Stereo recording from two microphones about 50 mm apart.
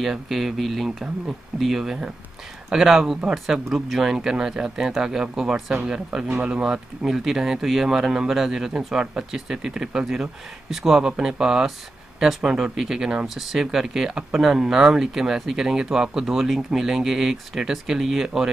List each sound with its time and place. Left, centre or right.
0.0 s speech: centre